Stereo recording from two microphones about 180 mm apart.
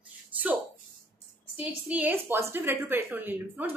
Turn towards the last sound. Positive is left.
turn(degrees=-10)  # may be behind; listen again after turning